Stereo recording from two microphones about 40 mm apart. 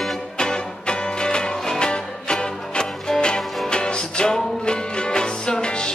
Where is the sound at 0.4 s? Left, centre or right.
Left.